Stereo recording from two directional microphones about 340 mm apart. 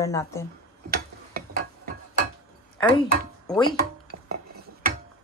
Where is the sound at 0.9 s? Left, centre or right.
Right.